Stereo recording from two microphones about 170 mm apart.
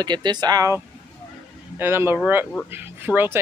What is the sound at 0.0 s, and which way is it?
Speech, 25° right (ahead or behind).